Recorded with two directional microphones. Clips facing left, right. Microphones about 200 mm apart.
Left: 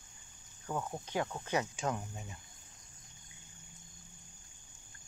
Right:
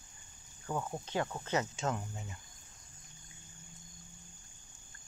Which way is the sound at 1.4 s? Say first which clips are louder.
Even; 15° left (ahead or behind).